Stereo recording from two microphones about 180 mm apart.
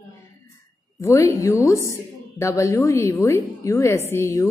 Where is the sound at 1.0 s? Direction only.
15° left (ahead or behind).